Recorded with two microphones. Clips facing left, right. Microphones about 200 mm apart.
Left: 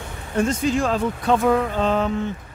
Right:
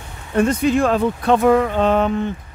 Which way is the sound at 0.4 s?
60° right (ahead or behind).